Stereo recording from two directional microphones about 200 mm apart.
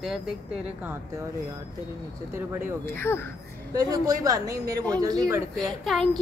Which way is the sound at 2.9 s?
10° left (ahead or behind).